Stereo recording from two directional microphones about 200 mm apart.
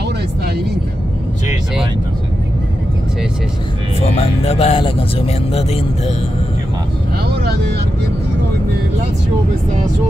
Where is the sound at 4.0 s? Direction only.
30° left (ahead or behind).